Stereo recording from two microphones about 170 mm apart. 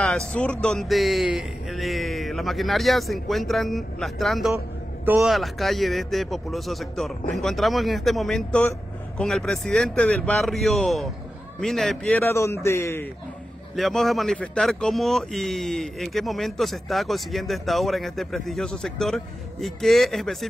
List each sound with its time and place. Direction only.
0.3 s speech: 5° left (ahead or behind)
12.2 s a man's voice: 15° left (ahead or behind)
13.7 s speech: centre (ahead or behind)